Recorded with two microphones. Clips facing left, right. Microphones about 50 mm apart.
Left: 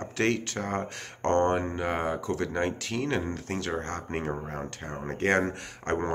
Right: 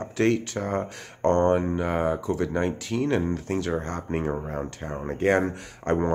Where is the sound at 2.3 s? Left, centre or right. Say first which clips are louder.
Right 4 dB; centre.